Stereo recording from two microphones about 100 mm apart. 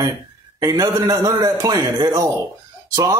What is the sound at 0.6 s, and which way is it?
A man's voice, 40° right (ahead or behind).